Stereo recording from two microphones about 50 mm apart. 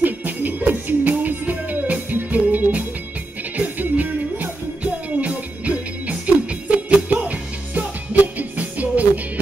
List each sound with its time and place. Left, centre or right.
0.0 s music: right